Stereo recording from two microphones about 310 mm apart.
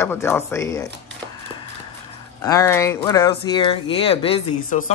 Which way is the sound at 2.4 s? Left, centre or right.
Centre.